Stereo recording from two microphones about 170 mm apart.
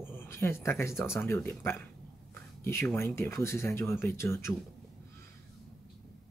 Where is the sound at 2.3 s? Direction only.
15° left (ahead or behind).